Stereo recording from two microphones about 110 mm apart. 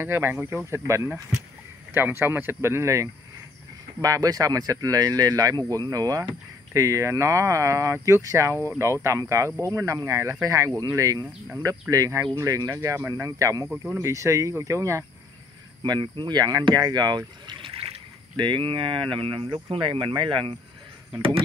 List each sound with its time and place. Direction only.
0.0 s speech: 20° right (ahead or behind)
15.8 s speech: 45° right (ahead or behind)